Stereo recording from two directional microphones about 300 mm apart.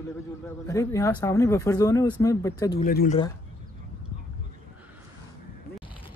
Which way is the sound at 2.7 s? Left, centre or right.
Left.